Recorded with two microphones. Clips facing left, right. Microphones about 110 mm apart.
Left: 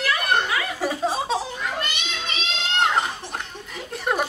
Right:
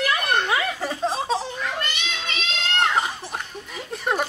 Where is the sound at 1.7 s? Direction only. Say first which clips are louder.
Even; 15° left (ahead or behind).